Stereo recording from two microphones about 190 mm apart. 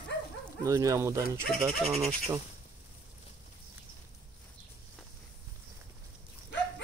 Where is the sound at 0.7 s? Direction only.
15° right (ahead or behind).